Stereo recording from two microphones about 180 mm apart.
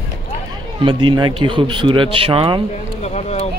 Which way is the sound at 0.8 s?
25° right (ahead or behind).